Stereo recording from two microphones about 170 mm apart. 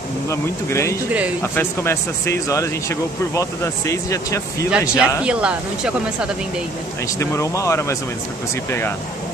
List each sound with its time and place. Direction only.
0.3 s speech: 15° left (ahead or behind)
4.6 s speech: 5° right (ahead or behind)
7.2 s speech: 15° left (ahead or behind)